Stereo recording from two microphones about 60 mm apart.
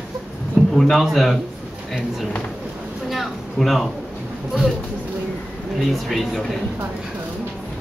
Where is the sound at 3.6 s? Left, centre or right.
Centre.